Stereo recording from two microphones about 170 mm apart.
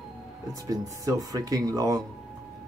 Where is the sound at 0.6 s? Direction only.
20° right (ahead or behind).